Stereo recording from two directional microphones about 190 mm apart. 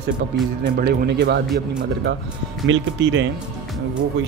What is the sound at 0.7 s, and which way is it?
Speech, 60° right (ahead or behind).